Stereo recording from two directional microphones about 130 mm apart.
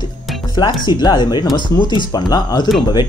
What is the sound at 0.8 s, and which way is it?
Speech, 35° left (ahead or behind).